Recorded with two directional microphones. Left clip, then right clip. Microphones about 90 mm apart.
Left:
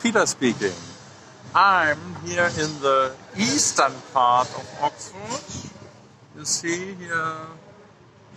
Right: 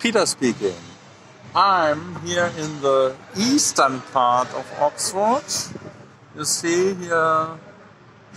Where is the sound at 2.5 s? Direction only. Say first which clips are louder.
Left 3 dB; 30° left (ahead or behind).